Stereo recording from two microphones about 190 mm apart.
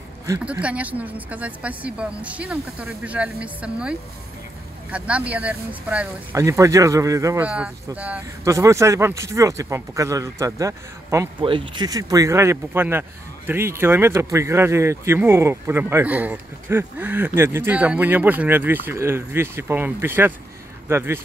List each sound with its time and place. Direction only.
0.3 s speech: 5° right (ahead or behind)
4.9 s speech: 5° right (ahead or behind)
11.4 s speech: 25° right (ahead or behind)